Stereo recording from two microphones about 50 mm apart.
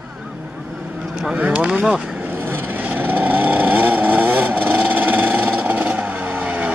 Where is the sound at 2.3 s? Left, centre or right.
Right.